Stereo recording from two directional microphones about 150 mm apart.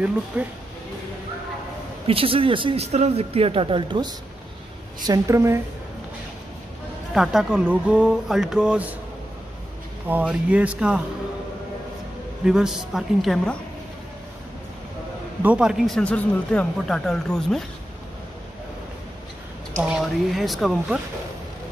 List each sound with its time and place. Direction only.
0.3 s speech: 10° right (ahead or behind)
2.0 s speech: 40° right (ahead or behind)
5.0 s a woman's voice: 20° right (ahead or behind)
7.2 s speech: 5° right (ahead or behind)
10.0 s speech: 10° right (ahead or behind)
12.4 s speech: 5° right (ahead or behind)
15.4 s speech: 5° right (ahead or behind)
19.8 s speech: 5° right (ahead or behind)